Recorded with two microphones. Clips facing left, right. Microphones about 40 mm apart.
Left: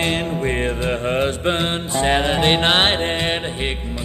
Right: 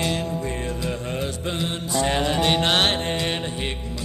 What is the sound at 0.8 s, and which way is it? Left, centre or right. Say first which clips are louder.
Mantra: left 9 dB; left.